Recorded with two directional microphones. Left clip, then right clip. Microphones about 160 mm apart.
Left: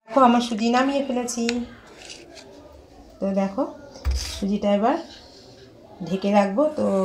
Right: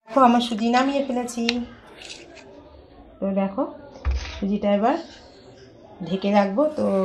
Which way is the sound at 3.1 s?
10° right (ahead or behind).